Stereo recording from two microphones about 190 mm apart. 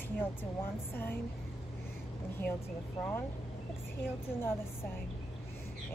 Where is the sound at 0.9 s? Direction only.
10° left (ahead or behind).